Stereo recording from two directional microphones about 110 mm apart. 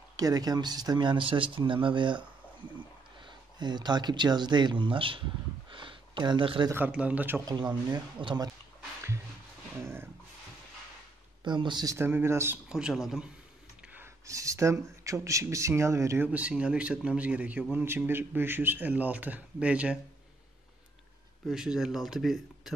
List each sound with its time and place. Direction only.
0.1 s speech: 35° right (ahead or behind)
3.3 s speech: 40° right (ahead or behind)
5.7 s a sound: 50° right (ahead or behind)
6.9 s speech: 10° right (ahead or behind)
7.4 s speech: 40° right (ahead or behind)
9.8 s speech: 25° right (ahead or behind)
11.4 s speech: 45° right (ahead or behind)
12.0 s speech: 20° right (ahead or behind)
12.6 s speech: 5° right (ahead or behind)
14.2 s speech: 30° right (ahead or behind)
16.3 s speech: 10° right (ahead or behind)
21.5 s speech: 5° right (ahead or behind)